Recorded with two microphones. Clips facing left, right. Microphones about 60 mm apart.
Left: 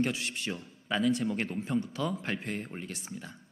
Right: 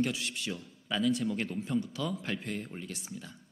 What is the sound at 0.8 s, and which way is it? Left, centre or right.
A man's voice, left.